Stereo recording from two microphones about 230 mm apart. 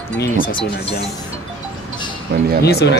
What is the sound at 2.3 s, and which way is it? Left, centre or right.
Speech, right.